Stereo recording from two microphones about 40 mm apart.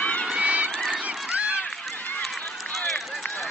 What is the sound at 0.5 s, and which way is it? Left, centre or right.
Goose, right.